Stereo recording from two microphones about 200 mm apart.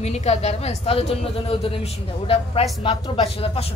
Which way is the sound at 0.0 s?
30° left (ahead or behind).